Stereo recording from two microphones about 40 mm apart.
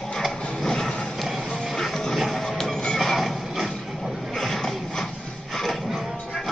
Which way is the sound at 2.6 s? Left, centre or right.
Centre.